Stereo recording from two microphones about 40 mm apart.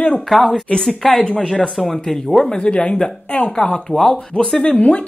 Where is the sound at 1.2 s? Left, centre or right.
Left.